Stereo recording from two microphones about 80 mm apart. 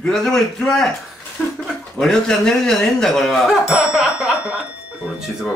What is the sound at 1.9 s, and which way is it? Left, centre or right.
Speech, centre.